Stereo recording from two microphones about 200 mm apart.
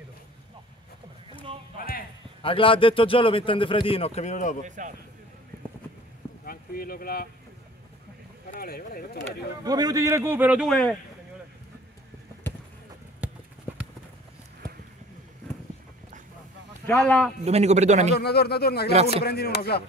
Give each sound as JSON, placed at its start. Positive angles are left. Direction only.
{"t": 1.8, "sound": "a sound", "side_deg": 45}
{"t": 2.4, "sound": "a man's voice", "side_deg": 25}
{"t": 4.6, "sound": "speech", "side_deg": -40}
{"t": 6.4, "sound": "speech", "side_deg": 50}
{"t": 8.5, "sound": "speech", "side_deg": 50}
{"t": 9.7, "sound": "a man's voice", "side_deg": -20}
{"t": 13.2, "sound": "clip-clop", "side_deg": -5}
{"t": 16.8, "sound": "speech", "side_deg": 5}
{"t": 17.5, "sound": "speech", "side_deg": -35}
{"t": 18.1, "sound": "speech", "side_deg": 55}